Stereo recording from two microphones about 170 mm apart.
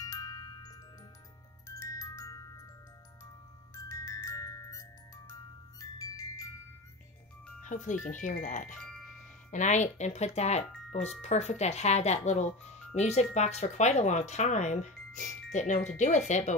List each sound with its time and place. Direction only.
0.0 s music: 20° left (ahead or behind)
3.7 s music: 20° left (ahead or behind)
7.6 s speech: 45° left (ahead or behind)